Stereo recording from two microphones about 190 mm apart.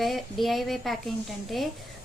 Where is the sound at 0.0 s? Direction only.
Centre (ahead or behind).